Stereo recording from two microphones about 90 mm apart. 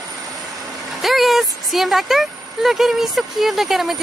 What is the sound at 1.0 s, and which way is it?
Speech, centre (ahead or behind).